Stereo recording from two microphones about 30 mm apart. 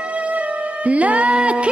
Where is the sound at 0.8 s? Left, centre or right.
Right.